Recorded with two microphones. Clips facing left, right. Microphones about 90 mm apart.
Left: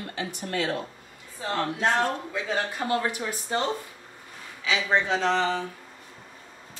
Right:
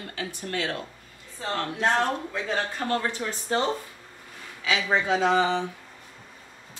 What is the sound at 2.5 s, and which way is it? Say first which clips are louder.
Speech: left 1 dB; 15° left (ahead or behind).